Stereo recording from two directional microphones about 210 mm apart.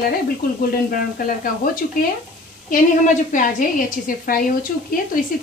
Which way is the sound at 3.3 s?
40° left (ahead or behind).